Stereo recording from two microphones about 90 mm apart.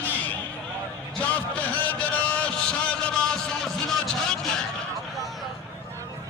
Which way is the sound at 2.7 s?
10° left (ahead or behind).